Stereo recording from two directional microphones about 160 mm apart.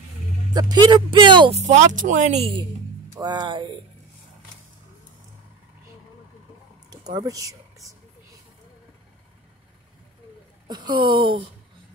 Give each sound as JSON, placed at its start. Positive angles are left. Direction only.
{"t": 0.5, "sound": "speech", "side_deg": -25}
{"t": 1.6, "sound": "speech", "side_deg": -45}
{"t": 3.2, "sound": "speech", "side_deg": -25}
{"t": 6.9, "sound": "speech", "side_deg": -25}
{"t": 10.7, "sound": "a woman's voice", "side_deg": -30}